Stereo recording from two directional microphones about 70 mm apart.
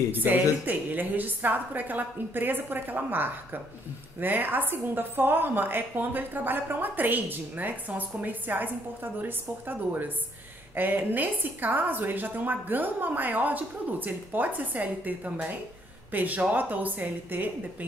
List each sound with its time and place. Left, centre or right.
0.1 s a woman's voice: right